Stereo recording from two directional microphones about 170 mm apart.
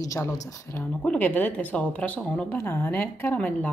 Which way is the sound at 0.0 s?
20° left (ahead or behind).